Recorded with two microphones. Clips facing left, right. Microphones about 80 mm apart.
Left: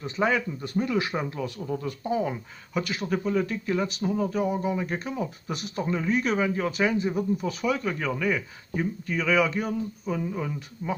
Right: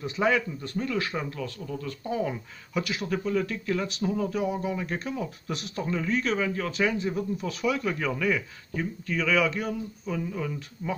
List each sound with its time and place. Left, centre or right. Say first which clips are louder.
0.0 s speech: even; centre
0.6 s speech: left 3 dB; centre
2.0 s speech: left 2 dB; centre
3.3 s speech: left 1 dB; centre
6.7 s speech: left 2 dB; centre